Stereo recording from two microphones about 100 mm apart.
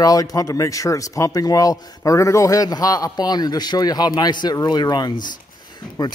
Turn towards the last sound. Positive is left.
turn(degrees=45)  # may be behind; listen again after turning